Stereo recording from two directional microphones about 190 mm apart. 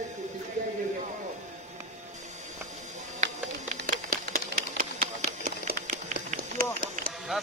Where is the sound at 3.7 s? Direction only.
50° right (ahead or behind).